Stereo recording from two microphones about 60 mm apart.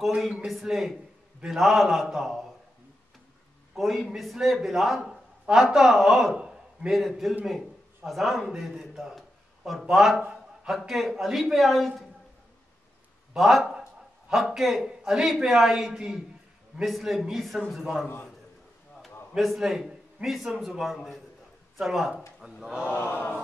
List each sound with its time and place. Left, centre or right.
0.0 s a man's voice: centre
3.7 s a man's voice: centre
6.3 s a sound: centre
6.9 s a man's voice: centre
10.3 s a sound: centre
10.8 s a man's voice: centre
13.3 s a man's voice: centre
19.3 s a man's voice: centre
22.9 s mantra: left